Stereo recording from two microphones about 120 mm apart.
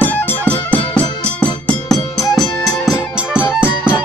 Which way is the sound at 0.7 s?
50° left (ahead or behind).